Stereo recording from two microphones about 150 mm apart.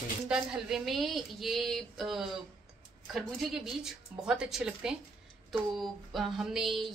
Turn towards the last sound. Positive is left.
turn(degrees=0)  # may be behind; listen again after turning